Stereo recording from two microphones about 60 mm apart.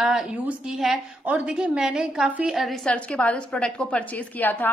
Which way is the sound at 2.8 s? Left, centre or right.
Left.